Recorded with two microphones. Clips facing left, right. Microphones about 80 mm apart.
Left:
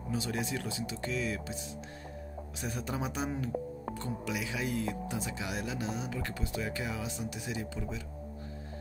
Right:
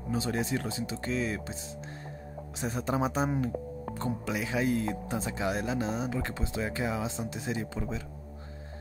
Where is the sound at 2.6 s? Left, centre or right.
Right.